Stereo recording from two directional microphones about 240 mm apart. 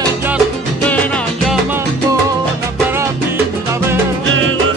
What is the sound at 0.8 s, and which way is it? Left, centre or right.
Music, centre.